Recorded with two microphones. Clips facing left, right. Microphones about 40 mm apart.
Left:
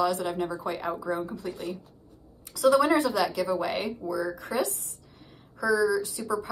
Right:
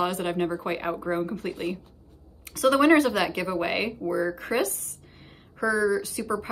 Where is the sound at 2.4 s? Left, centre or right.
Right.